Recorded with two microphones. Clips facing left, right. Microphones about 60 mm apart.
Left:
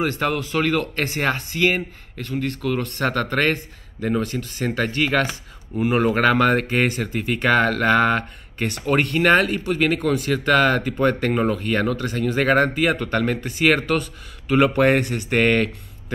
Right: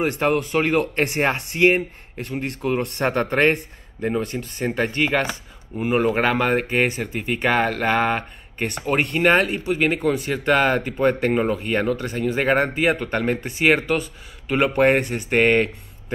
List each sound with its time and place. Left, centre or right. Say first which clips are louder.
0.6 s speech: right 2 dB; right
4.1 s speech: left 3 dB; centre
5.8 s speech: left 1 dB; centre
6.1 s speech: left 2 dB; centre